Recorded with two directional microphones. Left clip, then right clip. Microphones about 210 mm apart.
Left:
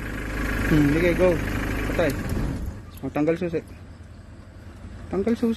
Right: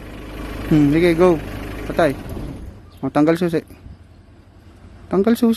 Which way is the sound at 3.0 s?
40° right (ahead or behind).